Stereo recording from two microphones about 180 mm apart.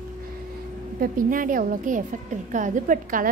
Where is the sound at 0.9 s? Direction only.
50° right (ahead or behind).